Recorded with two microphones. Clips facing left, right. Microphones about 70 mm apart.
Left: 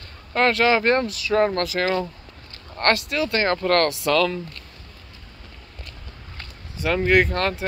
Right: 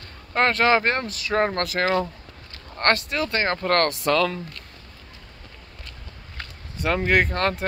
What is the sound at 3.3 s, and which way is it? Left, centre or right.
Speech, centre.